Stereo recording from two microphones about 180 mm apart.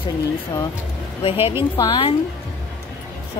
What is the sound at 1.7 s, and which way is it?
Speech, 20° left (ahead or behind).